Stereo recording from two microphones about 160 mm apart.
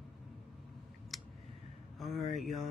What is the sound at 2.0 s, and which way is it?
Speech, centre (ahead or behind).